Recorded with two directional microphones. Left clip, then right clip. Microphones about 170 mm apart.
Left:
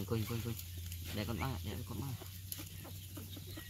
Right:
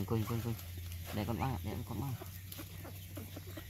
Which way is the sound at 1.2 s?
45° right (ahead or behind).